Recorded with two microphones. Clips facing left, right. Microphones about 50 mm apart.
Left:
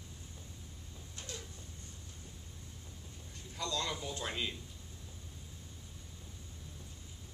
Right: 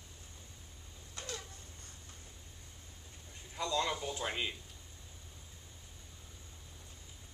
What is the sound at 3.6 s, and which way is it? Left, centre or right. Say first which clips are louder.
A man's voice: right 3 dB; centre.